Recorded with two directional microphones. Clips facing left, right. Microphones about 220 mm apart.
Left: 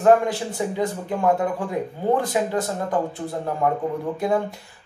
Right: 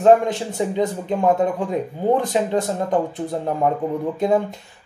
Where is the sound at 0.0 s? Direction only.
20° right (ahead or behind).